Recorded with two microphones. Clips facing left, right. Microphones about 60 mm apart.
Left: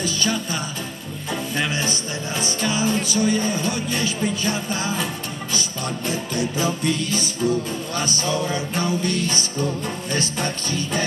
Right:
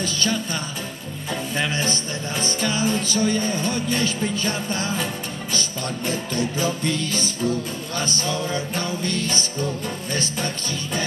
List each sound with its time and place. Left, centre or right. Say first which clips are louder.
0.0 s music: left 1 dB; centre
1.6 s music: right 1 dB; centre